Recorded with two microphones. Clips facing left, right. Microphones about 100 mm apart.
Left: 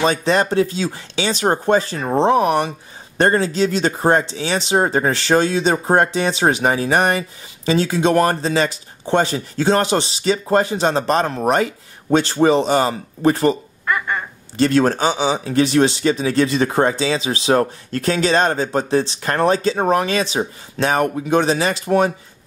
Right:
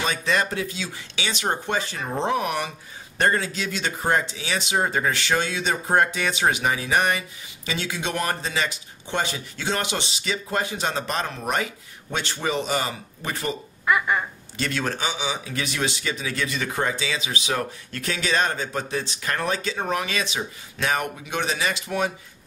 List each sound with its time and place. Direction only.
0.0 s speech: 30° left (ahead or behind)
13.8 s a sound: 5° right (ahead or behind)
14.6 s speech: 35° left (ahead or behind)